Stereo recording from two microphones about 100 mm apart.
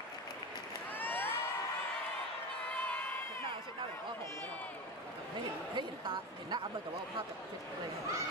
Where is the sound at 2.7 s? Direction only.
15° left (ahead or behind).